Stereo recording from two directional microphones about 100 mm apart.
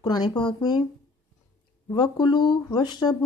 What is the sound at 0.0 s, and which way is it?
Speech, 45° left (ahead or behind).